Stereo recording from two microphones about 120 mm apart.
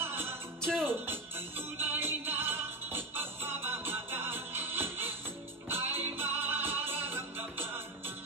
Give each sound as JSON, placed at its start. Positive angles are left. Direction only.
{"t": 0.0, "sound": "music", "side_deg": -20}
{"t": 0.6, "sound": "music", "side_deg": 5}
{"t": 1.8, "sound": "music", "side_deg": -15}